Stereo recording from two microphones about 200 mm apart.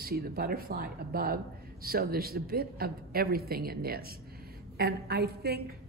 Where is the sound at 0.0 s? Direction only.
50° right (ahead or behind).